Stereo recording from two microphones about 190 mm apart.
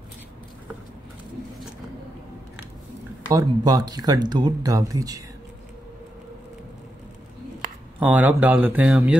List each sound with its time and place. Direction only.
3.3 s speech: 20° right (ahead or behind)
8.0 s speech: 10° right (ahead or behind)